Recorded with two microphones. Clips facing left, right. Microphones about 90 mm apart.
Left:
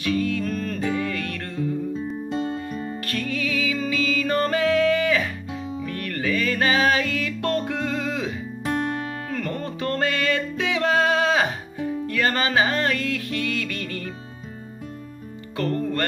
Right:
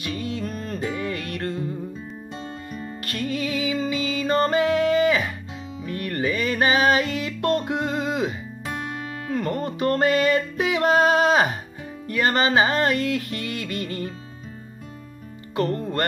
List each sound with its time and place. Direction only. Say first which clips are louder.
0.0 s music: left 5 dB; 30° right (ahead or behind)
3.1 s music: right 2 dB; 25° right (ahead or behind)
9.4 s music: right 5 dB; 30° right (ahead or behind)
13.1 s music: left 1 dB; 35° right (ahead or behind)
15.5 s music: even; 25° right (ahead or behind)